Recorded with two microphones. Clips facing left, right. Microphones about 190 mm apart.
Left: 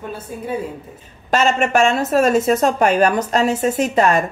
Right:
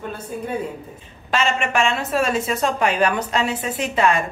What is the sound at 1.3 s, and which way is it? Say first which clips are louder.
A woman's voice: left 5 dB; 45° left (ahead or behind).